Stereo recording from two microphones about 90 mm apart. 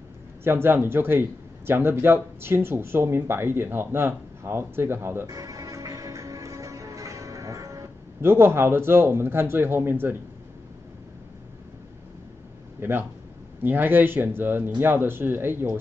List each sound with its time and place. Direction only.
0.4 s speech: 25° right (ahead or behind)
5.2 s music: 40° right (ahead or behind); by 10.1 s 25° right (ahead or behind)
12.8 s speech: 25° right (ahead or behind)